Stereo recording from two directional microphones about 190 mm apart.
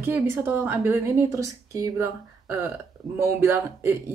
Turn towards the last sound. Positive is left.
turn(degrees=-10)  # may be behind; listen again after turning